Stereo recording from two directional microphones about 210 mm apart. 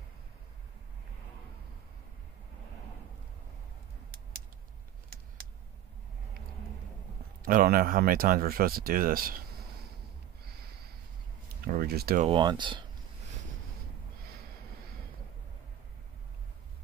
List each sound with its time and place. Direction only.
7.4 s speech: 40° right (ahead or behind)
10.4 s a sound: 50° right (ahead or behind)
11.6 s speech: 45° right (ahead or behind)
12.3 s speech: 20° right (ahead or behind)